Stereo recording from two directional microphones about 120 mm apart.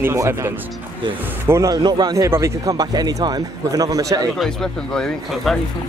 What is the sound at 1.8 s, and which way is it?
Speech, 35° right (ahead or behind).